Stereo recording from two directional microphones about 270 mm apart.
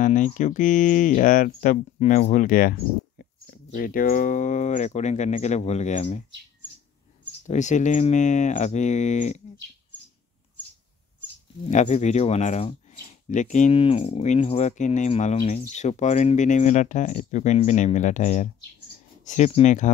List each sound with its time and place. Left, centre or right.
0.0 s speech: left
7.4 s speech: left
11.6 s speech: left